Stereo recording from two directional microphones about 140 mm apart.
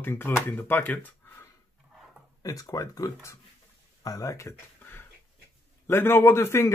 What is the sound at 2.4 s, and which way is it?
A man's voice, 25° left (ahead or behind).